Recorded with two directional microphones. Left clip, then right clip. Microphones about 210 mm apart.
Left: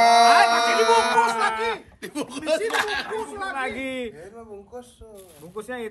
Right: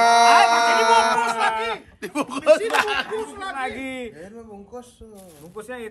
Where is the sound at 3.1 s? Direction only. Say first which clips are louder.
Even; centre (ahead or behind).